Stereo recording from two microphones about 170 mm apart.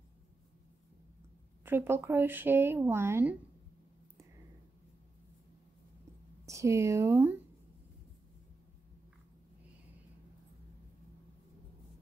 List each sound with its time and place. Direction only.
1.6 s speech: 15° right (ahead or behind)
6.4 s speech: 15° right (ahead or behind)